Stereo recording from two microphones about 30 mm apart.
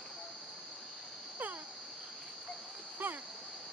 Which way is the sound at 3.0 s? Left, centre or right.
Right.